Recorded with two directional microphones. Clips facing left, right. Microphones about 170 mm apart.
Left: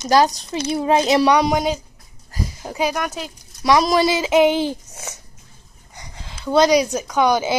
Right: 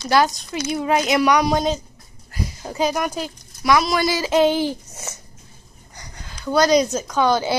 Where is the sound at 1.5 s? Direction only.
10° left (ahead or behind).